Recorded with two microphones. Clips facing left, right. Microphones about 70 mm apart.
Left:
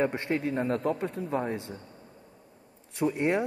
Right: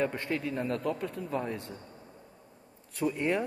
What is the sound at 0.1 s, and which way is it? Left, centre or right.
Speech, left.